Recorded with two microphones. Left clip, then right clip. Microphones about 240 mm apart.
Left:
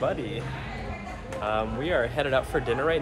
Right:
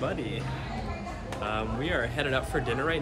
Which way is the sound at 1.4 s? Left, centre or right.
Centre.